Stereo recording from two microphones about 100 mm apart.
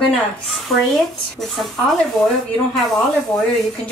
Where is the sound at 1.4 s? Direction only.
Centre (ahead or behind).